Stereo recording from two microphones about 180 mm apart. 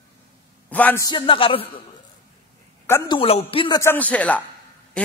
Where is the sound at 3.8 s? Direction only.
10° left (ahead or behind).